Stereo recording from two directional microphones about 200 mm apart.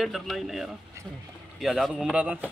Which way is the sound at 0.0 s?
Centre (ahead or behind).